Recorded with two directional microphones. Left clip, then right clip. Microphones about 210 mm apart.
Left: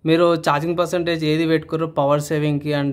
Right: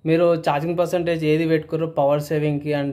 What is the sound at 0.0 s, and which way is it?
Speech, 20° left (ahead or behind).